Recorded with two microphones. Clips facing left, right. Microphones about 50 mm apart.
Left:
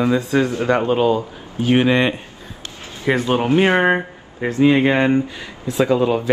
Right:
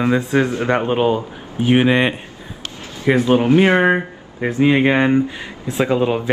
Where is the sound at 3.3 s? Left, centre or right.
Centre.